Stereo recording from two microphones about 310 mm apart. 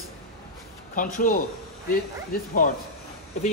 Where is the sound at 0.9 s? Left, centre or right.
Left.